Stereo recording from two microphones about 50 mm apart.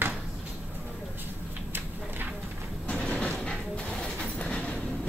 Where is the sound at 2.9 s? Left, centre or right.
Centre.